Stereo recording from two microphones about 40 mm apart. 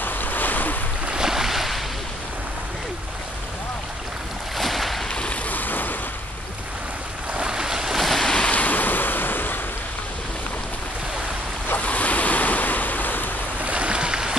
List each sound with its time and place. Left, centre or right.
0.0 s waves: left
1.0 s boat: centre
1.3 s waves: centre
4.6 s boat: centre
5.1 s a sound: left
5.5 s vehicle: left
7.3 s boat: centre
8.0 s waves: centre
8.4 s waves: left
11.8 s waves: left
13.6 s boat: right